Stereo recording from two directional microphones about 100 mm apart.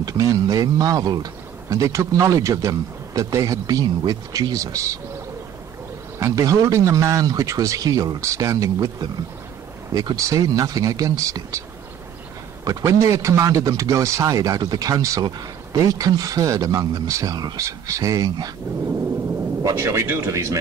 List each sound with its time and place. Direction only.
0.0 s speech: 35° right (ahead or behind)
1.8 s speech: 30° right (ahead or behind)
6.1 s speech: 30° right (ahead or behind)
9.9 s speech: 35° right (ahead or behind)
12.6 s speech: 30° right (ahead or behind)
17.6 s speech: 30° right (ahead or behind)
19.6 s speech: 30° right (ahead or behind)